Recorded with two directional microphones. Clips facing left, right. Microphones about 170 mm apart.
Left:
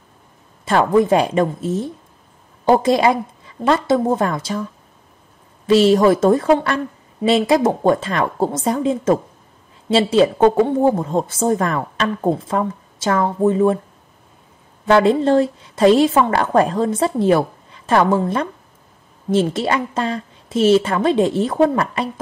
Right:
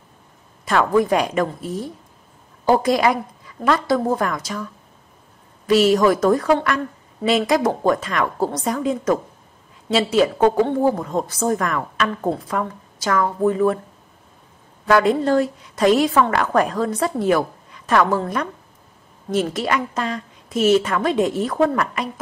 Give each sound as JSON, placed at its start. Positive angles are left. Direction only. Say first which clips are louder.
{"t": 0.7, "sound": "a woman's voice", "louder": "left 3 dB", "side_deg": 25}
{"t": 5.7, "sound": "a woman's voice", "louder": "left 3 dB", "side_deg": 25}
{"t": 14.9, "sound": "a woman's voice", "louder": "left 3 dB", "side_deg": 25}